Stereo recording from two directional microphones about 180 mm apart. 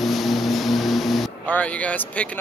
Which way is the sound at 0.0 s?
Centre (ahead or behind).